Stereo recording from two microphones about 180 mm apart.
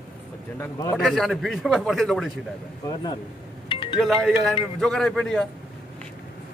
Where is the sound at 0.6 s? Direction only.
15° left (ahead or behind).